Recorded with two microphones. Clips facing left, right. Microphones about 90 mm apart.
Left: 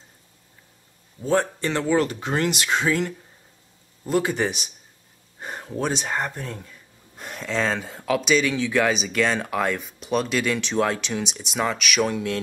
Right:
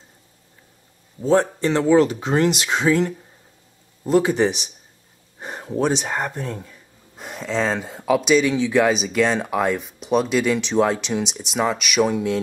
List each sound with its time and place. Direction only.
1.3 s speech: 15° right (ahead or behind)
5.4 s a sound: 15° right (ahead or behind)
5.9 s speech: 5° right (ahead or behind)